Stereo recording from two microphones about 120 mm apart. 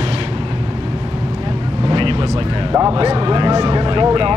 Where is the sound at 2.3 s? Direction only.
40° right (ahead or behind).